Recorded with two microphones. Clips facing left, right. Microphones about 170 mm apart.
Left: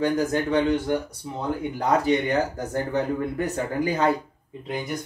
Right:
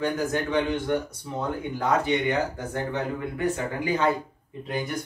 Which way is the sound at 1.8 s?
35° left (ahead or behind).